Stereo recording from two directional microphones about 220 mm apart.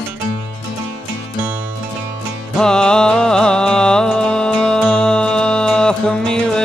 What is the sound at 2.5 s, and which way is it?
Music, 5° left (ahead or behind).